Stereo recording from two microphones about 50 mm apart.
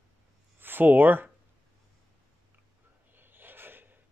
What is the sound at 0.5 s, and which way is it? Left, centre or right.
Speech, right.